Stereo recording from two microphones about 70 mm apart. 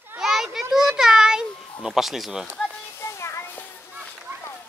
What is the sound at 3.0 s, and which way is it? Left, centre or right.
Music, left.